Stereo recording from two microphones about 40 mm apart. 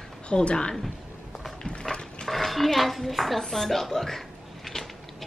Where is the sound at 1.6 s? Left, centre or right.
Left.